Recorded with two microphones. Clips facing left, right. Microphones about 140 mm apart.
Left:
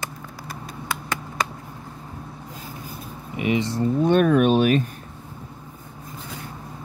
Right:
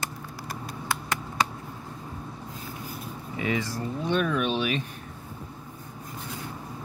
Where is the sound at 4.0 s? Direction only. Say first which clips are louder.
Left 9 dB; 50° left (ahead or behind).